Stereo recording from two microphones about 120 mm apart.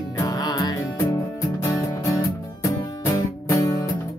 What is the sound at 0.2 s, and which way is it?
Music, 35° left (ahead or behind).